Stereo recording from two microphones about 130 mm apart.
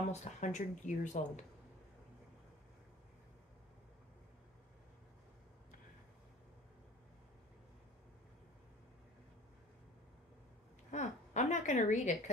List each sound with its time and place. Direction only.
0.1 s speech: 65° left (ahead or behind)
10.9 s a woman's voice: 70° left (ahead or behind)